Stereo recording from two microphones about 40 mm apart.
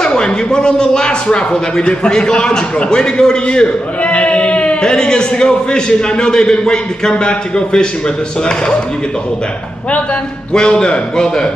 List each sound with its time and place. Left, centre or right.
0.0 s a man's voice: left
3.6 s a sound: left
4.8 s a man's voice: centre
10.5 s a man's voice: centre